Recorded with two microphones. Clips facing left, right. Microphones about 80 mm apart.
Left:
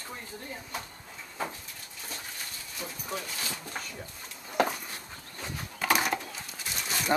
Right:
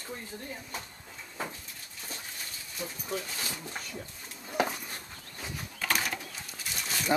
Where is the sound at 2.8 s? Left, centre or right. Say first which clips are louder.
Right 2 dB; left.